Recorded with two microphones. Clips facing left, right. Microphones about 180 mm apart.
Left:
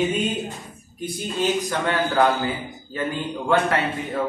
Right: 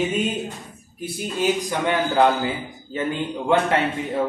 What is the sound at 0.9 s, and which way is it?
A man's voice, 10° right (ahead or behind).